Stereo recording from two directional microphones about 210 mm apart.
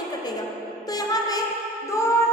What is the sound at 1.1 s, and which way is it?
Music, 15° left (ahead or behind).